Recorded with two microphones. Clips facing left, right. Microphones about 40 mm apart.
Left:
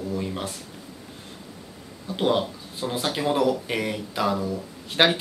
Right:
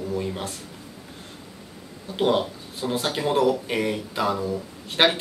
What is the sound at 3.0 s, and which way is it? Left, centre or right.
Speech, centre.